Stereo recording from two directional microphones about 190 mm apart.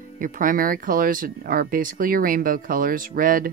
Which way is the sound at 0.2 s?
45° right (ahead or behind).